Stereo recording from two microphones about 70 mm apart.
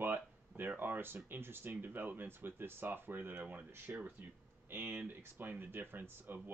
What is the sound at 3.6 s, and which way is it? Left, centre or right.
Speech, right.